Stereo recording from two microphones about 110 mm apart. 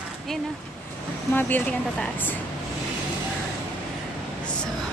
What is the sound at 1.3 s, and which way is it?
Speech, 15° left (ahead or behind).